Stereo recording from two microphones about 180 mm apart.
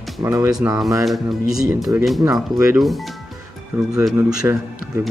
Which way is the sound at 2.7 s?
Centre (ahead or behind).